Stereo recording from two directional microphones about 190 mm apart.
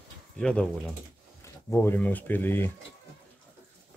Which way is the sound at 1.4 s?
15° left (ahead or behind).